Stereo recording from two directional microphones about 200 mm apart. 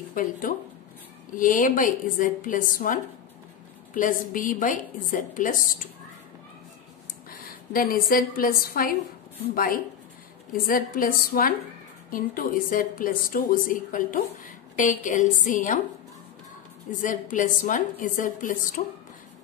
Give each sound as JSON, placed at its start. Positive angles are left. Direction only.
{"t": 0.1, "sound": "a woman's voice", "side_deg": 45}
{"t": 7.2, "sound": "a woman's voice", "side_deg": 45}
{"t": 10.7, "sound": "a woman's voice", "side_deg": 45}
{"t": 17.0, "sound": "a woman's voice", "side_deg": 40}